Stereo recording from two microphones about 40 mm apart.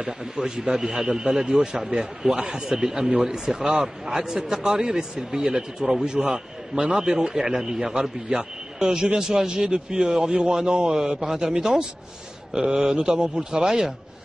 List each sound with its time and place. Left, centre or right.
0.0 s a man's voice: centre